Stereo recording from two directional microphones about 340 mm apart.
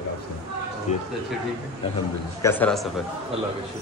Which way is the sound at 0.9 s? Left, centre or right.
Left.